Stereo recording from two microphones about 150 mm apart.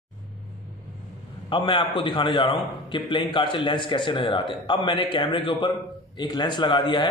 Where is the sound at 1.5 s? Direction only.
35° left (ahead or behind).